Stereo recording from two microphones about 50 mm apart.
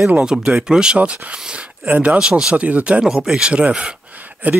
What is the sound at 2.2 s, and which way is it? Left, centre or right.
Speech, centre.